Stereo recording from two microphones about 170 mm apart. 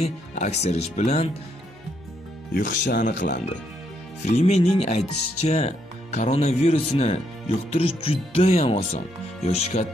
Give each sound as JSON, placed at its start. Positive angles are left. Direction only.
{"t": 0.0, "sound": "speech", "side_deg": 40}
{"t": 2.5, "sound": "speech", "side_deg": 50}